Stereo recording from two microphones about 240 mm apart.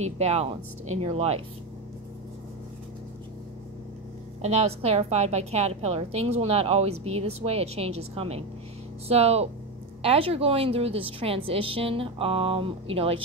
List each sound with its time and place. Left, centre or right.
0.0 s a woman's voice: right
4.4 s a woman's voice: right